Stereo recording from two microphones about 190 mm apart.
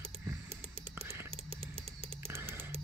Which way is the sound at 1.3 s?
30° right (ahead or behind).